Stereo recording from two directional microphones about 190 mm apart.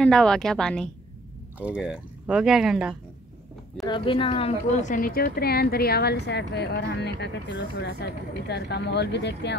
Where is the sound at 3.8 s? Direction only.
25° left (ahead or behind).